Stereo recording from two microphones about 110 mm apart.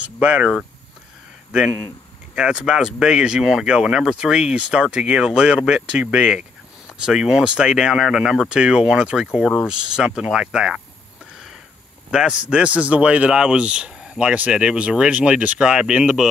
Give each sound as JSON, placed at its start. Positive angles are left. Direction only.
{"t": 0.0, "sound": "speech", "side_deg": -10}
{"t": 1.5, "sound": "speech", "side_deg": -10}
{"t": 12.1, "sound": "speech", "side_deg": -5}